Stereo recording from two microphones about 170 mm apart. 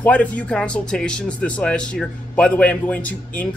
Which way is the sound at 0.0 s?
10° left (ahead or behind).